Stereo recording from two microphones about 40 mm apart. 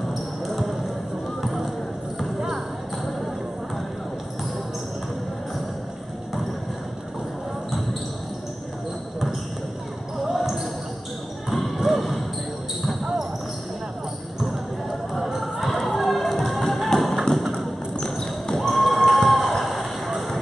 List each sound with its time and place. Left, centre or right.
0.1 s basketball bounce: centre
10.2 s basketball bounce: centre
14.4 s basketball bounce: centre
15.6 s music: centre
17.9 s a sound: centre
18.6 s a sound: centre
20.1 s music: centre